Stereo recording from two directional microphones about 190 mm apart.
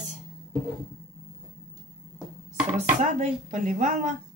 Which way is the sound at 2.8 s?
40° right (ahead or behind).